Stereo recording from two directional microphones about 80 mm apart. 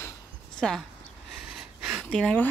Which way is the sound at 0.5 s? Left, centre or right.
Centre.